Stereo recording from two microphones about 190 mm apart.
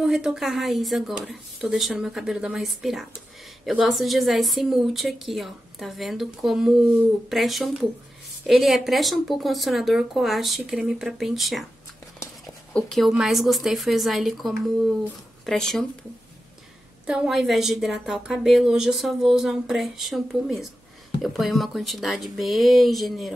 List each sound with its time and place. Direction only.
0.0 s a woman's voice: centre (ahead or behind)
12.7 s a woman's voice: 5° left (ahead or behind)